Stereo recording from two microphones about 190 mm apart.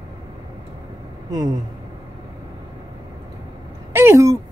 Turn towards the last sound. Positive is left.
turn(degrees=-15)  # may be behind; listen again after turning